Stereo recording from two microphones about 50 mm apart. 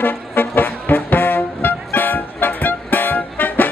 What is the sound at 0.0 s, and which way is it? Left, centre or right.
Music, left.